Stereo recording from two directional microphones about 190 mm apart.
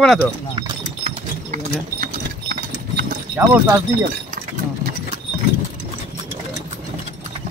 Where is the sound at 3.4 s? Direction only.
10° right (ahead or behind).